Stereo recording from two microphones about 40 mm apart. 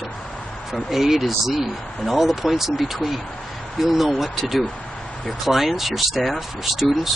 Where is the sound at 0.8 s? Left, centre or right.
Centre.